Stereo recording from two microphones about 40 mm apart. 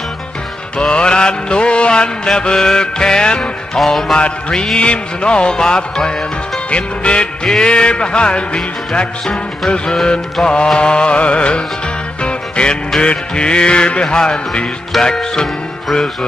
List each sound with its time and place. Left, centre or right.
0.7 s mantra: left
2.2 s music: centre
3.7 s music: centre
4.2 s music: left
7.4 s music: centre
10.4 s music: left
15.4 s speech: centre